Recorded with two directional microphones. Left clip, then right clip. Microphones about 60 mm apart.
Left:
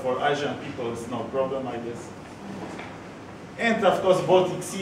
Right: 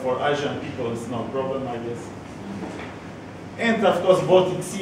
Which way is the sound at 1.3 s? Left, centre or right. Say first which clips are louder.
Left 1 dB; centre.